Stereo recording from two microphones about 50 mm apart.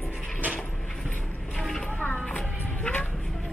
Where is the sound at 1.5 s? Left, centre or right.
Centre.